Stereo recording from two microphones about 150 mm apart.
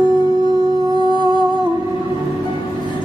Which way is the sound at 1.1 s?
30° left (ahead or behind).